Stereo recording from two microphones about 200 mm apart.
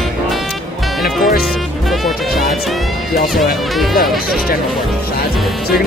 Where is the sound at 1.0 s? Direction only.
50° left (ahead or behind).